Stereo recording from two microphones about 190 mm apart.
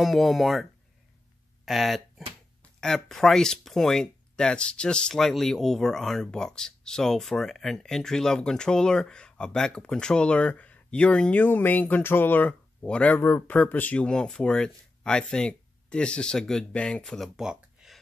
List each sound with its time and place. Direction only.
0.0 s speech: centre (ahead or behind)
1.7 s speech: centre (ahead or behind)